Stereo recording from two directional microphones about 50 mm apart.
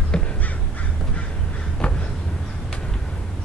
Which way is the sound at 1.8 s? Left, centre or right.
Left.